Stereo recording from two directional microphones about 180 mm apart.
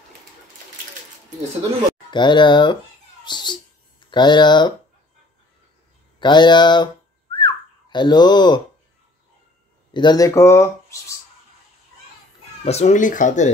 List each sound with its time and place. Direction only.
2.0 s speech: 25° left (ahead or behind)
6.1 s speech: 25° left (ahead or behind)
7.3 s whistling: 25° left (ahead or behind)
9.9 s speech: 20° left (ahead or behind)
12.6 s speech: 35° left (ahead or behind)